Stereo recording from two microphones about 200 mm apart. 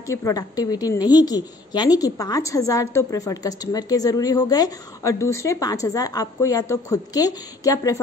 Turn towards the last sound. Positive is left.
turn(degrees=15)  # may be behind; listen again after turning